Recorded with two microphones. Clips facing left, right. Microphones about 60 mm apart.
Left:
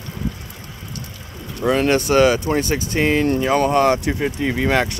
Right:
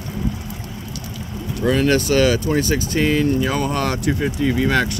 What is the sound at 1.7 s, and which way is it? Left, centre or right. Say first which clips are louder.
Speech: left 1 dB; left.